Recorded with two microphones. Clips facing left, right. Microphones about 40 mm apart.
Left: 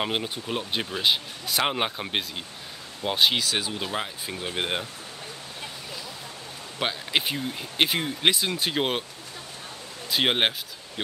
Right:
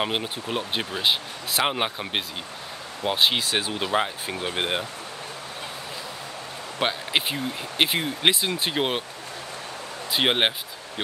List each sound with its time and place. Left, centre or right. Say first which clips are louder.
0.0 s speech: right 1 dB; centre
3.7 s speech: right 6 dB; centre
6.8 s speech: right 2 dB; centre
10.1 s speech: right 1 dB; centre